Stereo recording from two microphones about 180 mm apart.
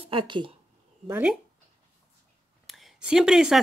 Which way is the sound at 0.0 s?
30° right (ahead or behind).